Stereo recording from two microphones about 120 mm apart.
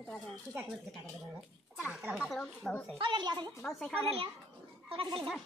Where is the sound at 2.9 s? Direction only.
40° right (ahead or behind).